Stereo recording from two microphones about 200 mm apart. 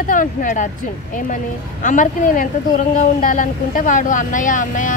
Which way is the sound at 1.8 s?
40° left (ahead or behind).